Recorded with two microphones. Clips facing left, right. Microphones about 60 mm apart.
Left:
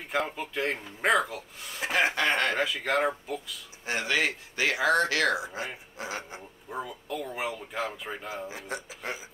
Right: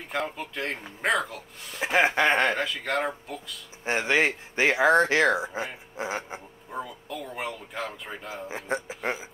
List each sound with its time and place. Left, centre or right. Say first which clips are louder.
0.1 s speech: left 1 dB; centre
1.9 s speech: right 4 dB; centre
2.5 s speech: left 1 dB; centre
3.8 s speech: right 4 dB; right
6.7 s speech: even; centre
8.5 s speech: right 6 dB; right